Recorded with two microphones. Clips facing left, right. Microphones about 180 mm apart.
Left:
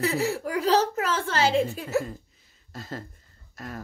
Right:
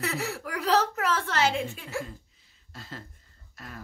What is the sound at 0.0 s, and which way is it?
A woman's voice, 30° left (ahead or behind).